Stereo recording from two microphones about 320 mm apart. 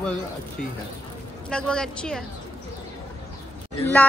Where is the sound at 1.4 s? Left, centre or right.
Centre.